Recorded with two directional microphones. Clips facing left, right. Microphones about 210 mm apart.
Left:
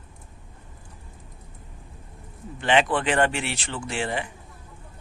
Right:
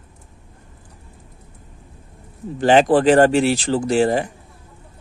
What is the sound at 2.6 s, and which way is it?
Speech, 40° right (ahead or behind).